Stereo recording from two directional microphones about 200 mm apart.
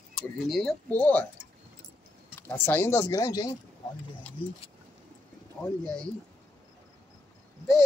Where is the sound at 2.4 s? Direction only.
10° left (ahead or behind).